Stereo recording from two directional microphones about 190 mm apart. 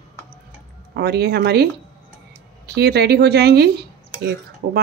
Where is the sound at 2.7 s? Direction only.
60° right (ahead or behind).